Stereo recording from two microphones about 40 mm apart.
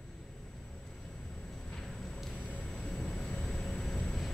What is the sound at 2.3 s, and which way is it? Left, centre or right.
Music, left.